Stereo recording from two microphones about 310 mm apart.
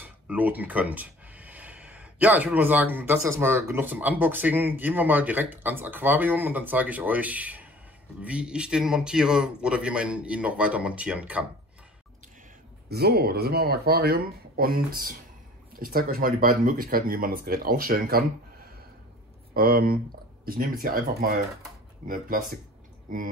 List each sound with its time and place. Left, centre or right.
0.0 s speech: centre
12.9 s speech: right
19.5 s speech: right